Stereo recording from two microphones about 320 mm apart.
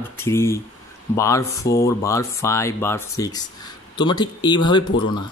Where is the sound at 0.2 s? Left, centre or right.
Centre.